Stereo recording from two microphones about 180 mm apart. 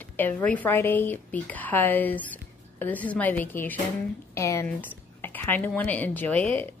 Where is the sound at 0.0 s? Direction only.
10° left (ahead or behind).